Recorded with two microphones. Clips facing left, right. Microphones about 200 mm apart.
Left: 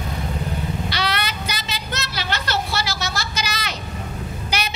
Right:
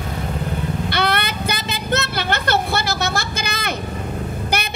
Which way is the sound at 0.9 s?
55° right (ahead or behind).